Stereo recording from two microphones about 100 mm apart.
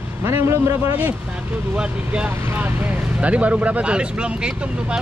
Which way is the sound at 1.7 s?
10° right (ahead or behind).